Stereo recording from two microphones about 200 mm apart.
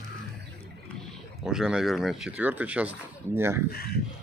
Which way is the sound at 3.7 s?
50° left (ahead or behind).